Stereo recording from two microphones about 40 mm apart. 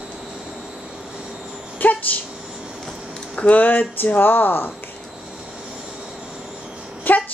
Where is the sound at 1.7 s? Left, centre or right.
Left.